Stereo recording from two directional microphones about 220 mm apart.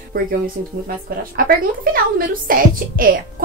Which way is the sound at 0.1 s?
40° right (ahead or behind).